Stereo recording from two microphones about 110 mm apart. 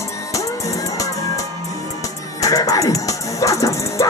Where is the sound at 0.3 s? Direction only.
30° left (ahead or behind).